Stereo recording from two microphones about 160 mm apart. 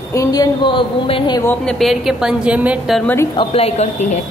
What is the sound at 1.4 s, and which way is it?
A woman's voice, 5° left (ahead or behind).